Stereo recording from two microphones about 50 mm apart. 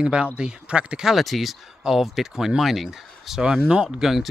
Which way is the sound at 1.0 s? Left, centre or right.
Centre.